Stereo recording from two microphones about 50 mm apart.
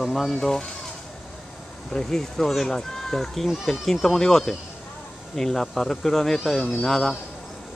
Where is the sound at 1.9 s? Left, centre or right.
Centre.